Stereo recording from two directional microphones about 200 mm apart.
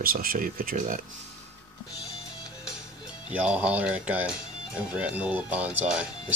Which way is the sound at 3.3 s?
5° right (ahead or behind).